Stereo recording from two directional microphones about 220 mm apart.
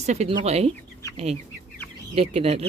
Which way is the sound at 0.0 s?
30° right (ahead or behind).